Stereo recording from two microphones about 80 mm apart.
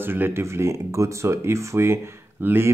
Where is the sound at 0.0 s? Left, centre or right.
Right.